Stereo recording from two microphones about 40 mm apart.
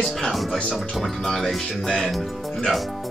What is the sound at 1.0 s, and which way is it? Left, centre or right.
Speech, centre.